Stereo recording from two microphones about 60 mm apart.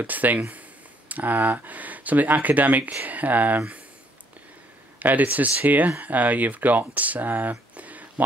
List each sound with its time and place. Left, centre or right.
0.0 s speech: right
4.9 s speech: right